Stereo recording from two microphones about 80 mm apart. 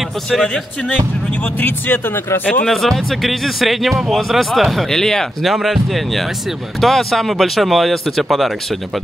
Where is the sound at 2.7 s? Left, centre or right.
Centre.